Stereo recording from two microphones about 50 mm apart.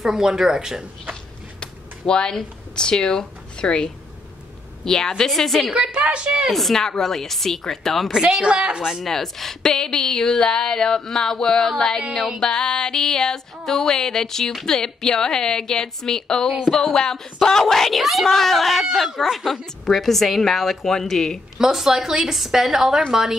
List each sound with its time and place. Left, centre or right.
0.0 s a woman's voice: centre
1.6 s speech: centre
4.8 s music: centre
5.7 s a woman's voice: centre
6.5 s a woman's voice: centre
8.5 s a woman's voice: centre
8.8 s a woman's voice: centre
9.1 s music: centre
16.7 s a woman's voice: centre
21.5 s a woman's voice: centre